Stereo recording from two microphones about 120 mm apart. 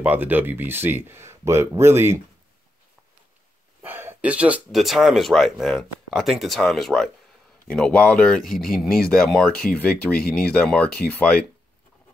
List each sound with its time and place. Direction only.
0.0 s speech: 15° right (ahead or behind)
3.8 s speech: 20° right (ahead or behind); by 11.4 s 10° left (ahead or behind)